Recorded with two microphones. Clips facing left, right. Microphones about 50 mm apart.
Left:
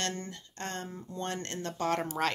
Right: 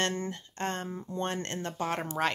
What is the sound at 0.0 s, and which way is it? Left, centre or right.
Speech, right.